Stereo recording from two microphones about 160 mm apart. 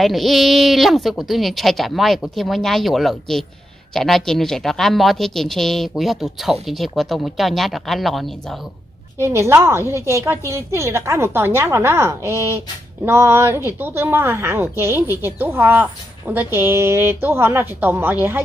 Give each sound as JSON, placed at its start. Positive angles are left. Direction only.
{"t": 0.0, "sound": "a woman's voice", "side_deg": 0}
{"t": 9.2, "sound": "a woman's voice", "side_deg": -15}